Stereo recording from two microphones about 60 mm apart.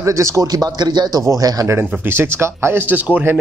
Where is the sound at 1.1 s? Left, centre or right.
Right.